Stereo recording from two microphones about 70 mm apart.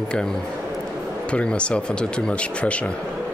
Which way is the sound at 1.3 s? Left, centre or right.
Centre.